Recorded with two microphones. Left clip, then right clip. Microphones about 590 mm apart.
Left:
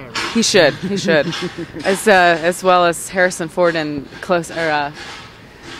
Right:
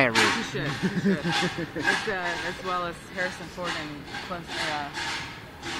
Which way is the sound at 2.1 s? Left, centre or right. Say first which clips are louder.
Left 17 dB; left.